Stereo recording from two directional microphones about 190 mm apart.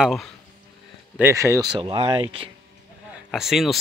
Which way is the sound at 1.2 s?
15° right (ahead or behind).